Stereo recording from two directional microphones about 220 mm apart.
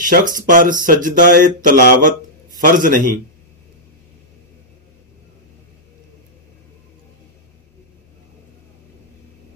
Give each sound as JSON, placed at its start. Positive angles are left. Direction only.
{"t": 0.0, "sound": "speech", "side_deg": -40}